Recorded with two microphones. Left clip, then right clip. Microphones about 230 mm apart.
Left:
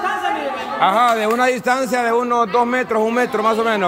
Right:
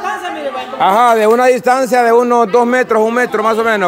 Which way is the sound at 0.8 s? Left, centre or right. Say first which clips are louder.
Right 6 dB; right.